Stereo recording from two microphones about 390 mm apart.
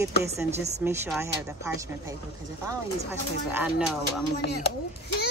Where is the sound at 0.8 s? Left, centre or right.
Centre.